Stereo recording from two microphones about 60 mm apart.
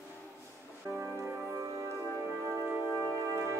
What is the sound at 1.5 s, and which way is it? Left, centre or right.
Music, right.